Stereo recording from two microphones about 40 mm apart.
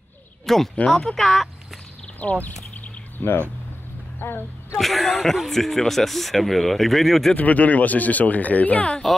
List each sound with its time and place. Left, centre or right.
0.5 s speech: centre
2.2 s speech: left
3.2 s speech: left
4.7 s speech: centre
7.3 s speech: left
9.0 s speech: centre